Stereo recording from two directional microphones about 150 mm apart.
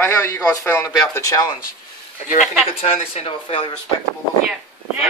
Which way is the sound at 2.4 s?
5° right (ahead or behind).